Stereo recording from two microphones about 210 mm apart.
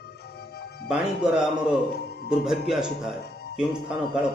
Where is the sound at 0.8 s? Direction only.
5° right (ahead or behind).